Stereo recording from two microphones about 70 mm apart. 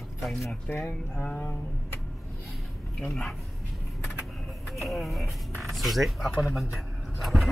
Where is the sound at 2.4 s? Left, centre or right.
Centre.